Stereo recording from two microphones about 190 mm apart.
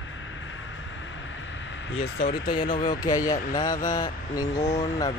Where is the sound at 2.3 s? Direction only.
25° left (ahead or behind).